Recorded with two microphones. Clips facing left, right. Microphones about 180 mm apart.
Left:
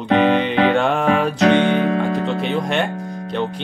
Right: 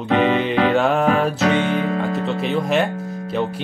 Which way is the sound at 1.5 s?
40° left (ahead or behind).